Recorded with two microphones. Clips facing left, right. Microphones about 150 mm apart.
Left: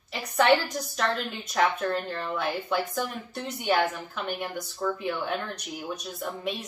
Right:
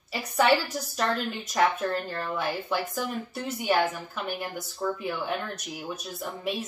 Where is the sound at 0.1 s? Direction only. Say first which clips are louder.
Left 1 dB; 5° right (ahead or behind).